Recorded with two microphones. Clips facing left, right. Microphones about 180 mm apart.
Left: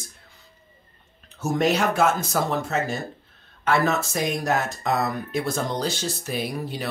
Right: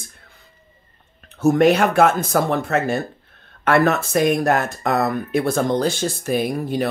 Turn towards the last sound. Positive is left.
turn(degrees=-50)  # may be behind; listen again after turning